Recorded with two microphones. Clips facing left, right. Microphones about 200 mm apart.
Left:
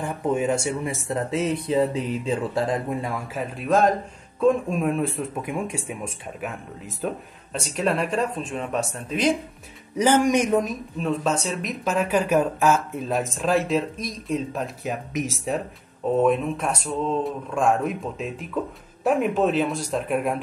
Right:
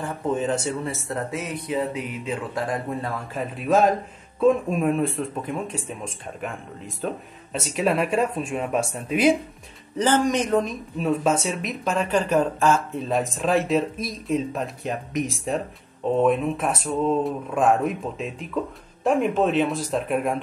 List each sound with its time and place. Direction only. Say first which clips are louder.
0.0 s speech: left 1 dB; 10° left (ahead or behind)
3.3 s speech: right 1 dB; centre (ahead or behind)
9.9 s speech: left 2 dB; 15° left (ahead or behind)